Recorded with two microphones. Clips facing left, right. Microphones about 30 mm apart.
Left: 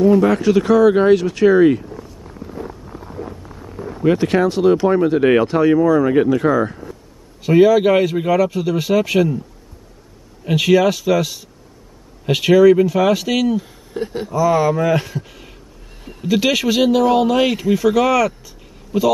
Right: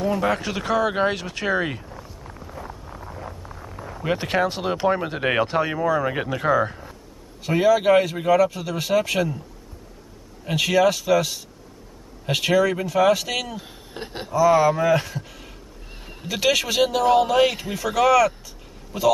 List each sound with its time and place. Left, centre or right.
0.0 s a sound: centre
4.0 s speech: centre
7.4 s speech: centre
10.4 s speech: centre
13.6 s speech: right
14.3 s speech: centre
16.0 s horse: centre
16.3 s speech: centre